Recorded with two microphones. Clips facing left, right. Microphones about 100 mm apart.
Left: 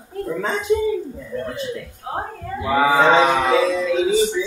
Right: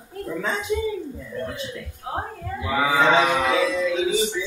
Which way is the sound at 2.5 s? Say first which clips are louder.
Left 5 dB; 35° left (ahead or behind).